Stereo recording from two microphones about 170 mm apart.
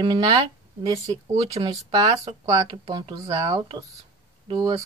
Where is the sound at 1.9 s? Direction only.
20° right (ahead or behind).